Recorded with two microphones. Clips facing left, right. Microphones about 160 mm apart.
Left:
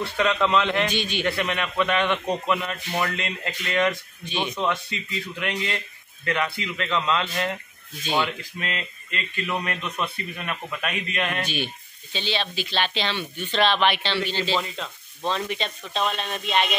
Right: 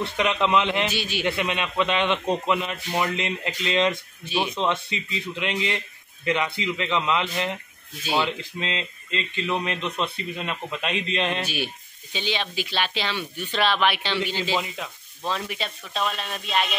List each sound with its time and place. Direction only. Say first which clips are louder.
0.0 s speech: left 1 dB; 15° right (ahead or behind)
0.8 s speech: left 1 dB; 5° right (ahead or behind)
1.2 s a man's voice: right 2 dB; 20° right (ahead or behind)
4.2 s speech: right 3 dB; 5° right (ahead or behind)
4.6 s a man's voice: right 1 dB; 20° right (ahead or behind)
8.3 s a man's voice: right 2 dB; 20° right (ahead or behind)
11.4 s speech: even; 10° right (ahead or behind)